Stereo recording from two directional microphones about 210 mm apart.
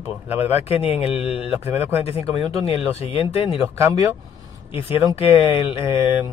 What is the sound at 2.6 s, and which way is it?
Speech, 25° left (ahead or behind).